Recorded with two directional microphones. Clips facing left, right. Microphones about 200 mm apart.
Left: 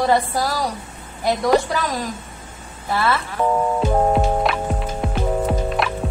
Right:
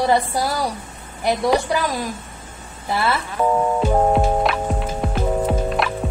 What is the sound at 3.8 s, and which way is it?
Music, 5° right (ahead or behind).